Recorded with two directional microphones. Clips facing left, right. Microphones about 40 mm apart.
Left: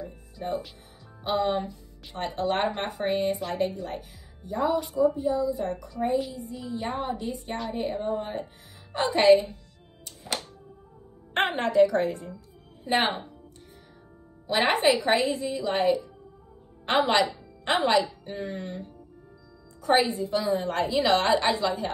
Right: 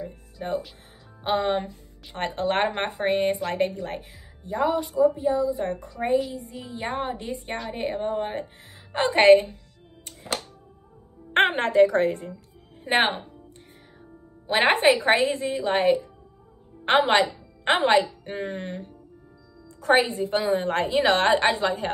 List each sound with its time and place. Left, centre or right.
0.0 s music: right
1.2 s a woman's voice: right
4.6 s speech: centre
5.1 s speech: right
11.3 s speech: right
14.5 s a woman's voice: right
19.8 s a woman's voice: right